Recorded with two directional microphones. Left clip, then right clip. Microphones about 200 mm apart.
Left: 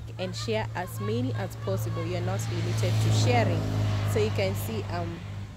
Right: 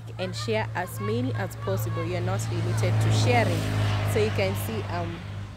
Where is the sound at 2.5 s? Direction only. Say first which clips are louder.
Right 2 dB; 20° left (ahead or behind).